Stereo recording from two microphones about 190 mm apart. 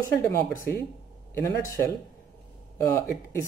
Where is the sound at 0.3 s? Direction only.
15° left (ahead or behind).